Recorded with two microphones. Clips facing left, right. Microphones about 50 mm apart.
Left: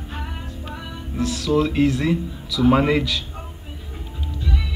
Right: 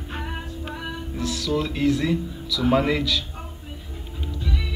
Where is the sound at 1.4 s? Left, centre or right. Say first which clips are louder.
Left 4 dB; left.